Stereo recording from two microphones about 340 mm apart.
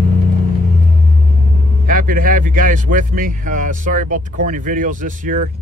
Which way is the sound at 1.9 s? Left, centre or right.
Right.